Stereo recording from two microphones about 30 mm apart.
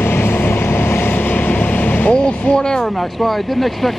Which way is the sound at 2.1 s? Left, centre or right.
Left.